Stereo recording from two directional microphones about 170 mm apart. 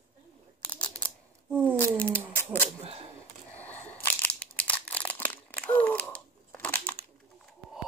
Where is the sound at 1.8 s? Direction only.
10° left (ahead or behind).